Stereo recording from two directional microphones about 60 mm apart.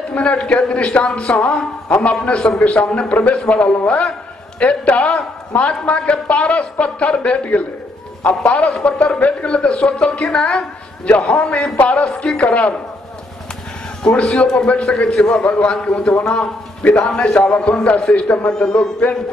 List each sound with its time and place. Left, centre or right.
0.1 s a woman's voice: left
12.0 s speech: centre
14.0 s a woman's voice: centre
18.5 s speech: centre